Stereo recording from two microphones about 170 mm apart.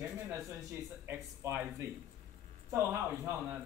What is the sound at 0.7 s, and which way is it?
A man's voice, 15° right (ahead or behind).